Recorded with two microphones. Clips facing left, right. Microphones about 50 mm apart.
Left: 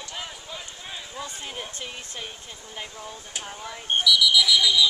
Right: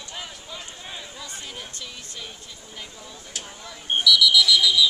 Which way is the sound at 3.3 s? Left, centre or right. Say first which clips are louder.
Left 1 dB; centre.